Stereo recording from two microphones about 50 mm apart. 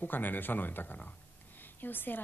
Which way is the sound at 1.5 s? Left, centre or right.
Left.